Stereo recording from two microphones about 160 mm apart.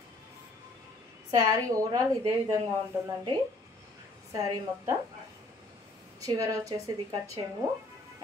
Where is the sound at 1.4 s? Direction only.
25° right (ahead or behind).